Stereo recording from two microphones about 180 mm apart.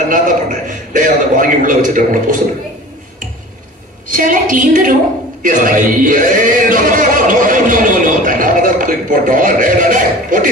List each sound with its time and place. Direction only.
0.1 s speech: 50° right (ahead or behind)
4.1 s speech: 50° right (ahead or behind)